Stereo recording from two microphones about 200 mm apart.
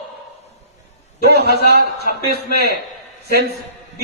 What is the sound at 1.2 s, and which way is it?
Speech, 50° right (ahead or behind).